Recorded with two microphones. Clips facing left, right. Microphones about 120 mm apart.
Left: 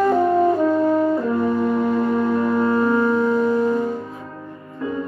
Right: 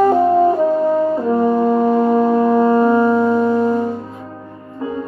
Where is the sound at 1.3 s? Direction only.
35° right (ahead or behind).